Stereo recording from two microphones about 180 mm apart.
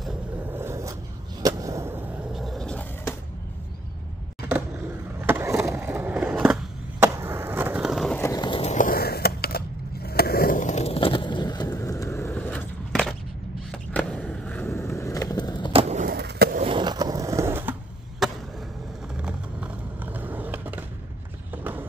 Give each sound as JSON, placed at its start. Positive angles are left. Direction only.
{"t": 0.5, "sound": "a sound", "side_deg": -15}
{"t": 5.2, "sound": "skateboard", "side_deg": -15}
{"t": 8.2, "sound": "a sound", "side_deg": 20}
{"t": 8.7, "sound": "skateboard", "side_deg": 50}
{"t": 15.7, "sound": "skateboard", "side_deg": -35}
{"t": 16.1, "sound": "skateboard", "side_deg": -60}
{"t": 16.6, "sound": "skateboard", "side_deg": -25}
{"t": 18.2, "sound": "chop", "side_deg": 0}
{"t": 19.1, "sound": "skateboard", "side_deg": -5}
{"t": 21.5, "sound": "run", "side_deg": -10}